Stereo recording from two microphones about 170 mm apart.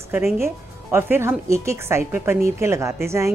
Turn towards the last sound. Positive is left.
turn(degrees=-15)  # may be behind; listen again after turning